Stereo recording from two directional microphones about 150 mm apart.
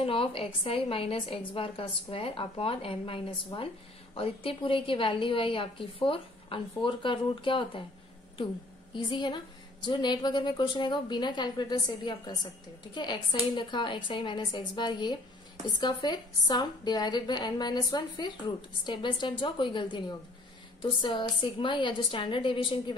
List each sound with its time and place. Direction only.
0.0 s a woman's voice: 40° left (ahead or behind)
8.9 s a woman's voice: 30° left (ahead or behind)